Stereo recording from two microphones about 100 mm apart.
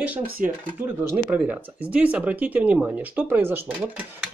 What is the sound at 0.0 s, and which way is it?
Speech, 15° right (ahead or behind).